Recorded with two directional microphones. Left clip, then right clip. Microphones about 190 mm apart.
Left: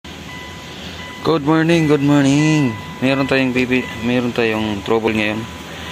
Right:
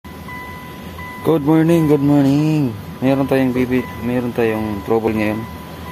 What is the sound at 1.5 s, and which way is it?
Speech, 15° right (ahead or behind).